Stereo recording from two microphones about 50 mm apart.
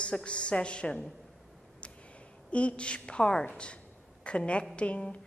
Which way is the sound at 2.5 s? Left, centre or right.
Left.